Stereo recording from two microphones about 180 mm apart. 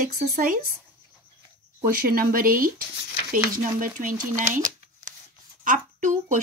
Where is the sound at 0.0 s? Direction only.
50° right (ahead or behind).